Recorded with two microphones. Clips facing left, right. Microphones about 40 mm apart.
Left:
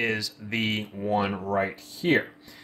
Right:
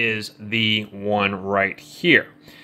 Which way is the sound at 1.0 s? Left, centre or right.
Right.